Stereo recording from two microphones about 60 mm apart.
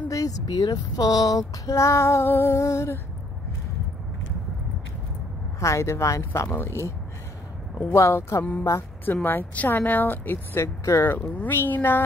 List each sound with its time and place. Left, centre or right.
0.1 s speech: left
5.6 s speech: left
6.5 s speech: left
7.9 s speech: left
9.0 s speech: left
11.3 s speech: left